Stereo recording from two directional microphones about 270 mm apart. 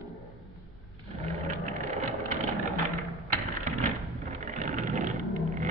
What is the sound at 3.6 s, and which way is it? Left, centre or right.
Vehicle, right.